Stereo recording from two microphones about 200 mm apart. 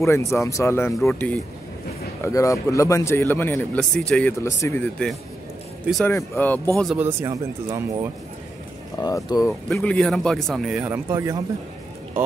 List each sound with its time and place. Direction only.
0.0 s speech: 15° left (ahead or behind)
6.8 s speech: centre (ahead or behind)
7.1 s speech: 15° right (ahead or behind)
9.0 s speech: 20° left (ahead or behind)
9.5 s speech: centre (ahead or behind); by 11.4 s 15° right (ahead or behind)